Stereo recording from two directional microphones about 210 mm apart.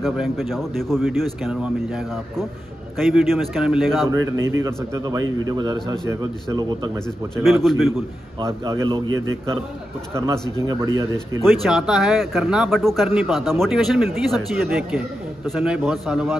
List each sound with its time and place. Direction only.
0.0 s speech: centre (ahead or behind)
4.6 s a man's voice: 15° right (ahead or behind)
7.4 s speech: centre (ahead or behind)
8.4 s a man's voice: 15° right (ahead or behind)
9.1 s a man's voice: 70° right (ahead or behind)
10.1 s a man's voice: 15° right (ahead or behind)
11.4 s speech: centre (ahead or behind)